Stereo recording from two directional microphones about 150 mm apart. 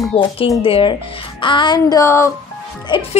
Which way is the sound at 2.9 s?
30° left (ahead or behind).